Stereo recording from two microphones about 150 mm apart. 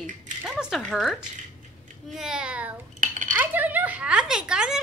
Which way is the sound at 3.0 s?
60° right (ahead or behind).